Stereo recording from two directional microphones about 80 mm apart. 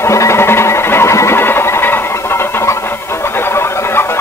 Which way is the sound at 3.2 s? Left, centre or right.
Left.